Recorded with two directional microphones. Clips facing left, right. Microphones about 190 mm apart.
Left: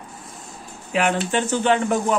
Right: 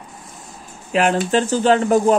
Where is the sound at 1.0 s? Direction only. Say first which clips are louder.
Right 4 dB; 40° right (ahead or behind).